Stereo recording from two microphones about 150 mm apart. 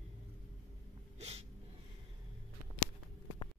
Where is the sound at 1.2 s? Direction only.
45° right (ahead or behind).